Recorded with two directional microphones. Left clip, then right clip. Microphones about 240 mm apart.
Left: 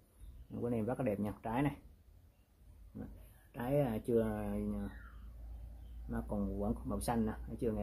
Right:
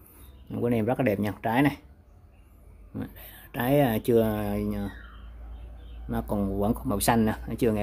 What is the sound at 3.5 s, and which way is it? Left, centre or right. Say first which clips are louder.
Speech: right 12 dB; right.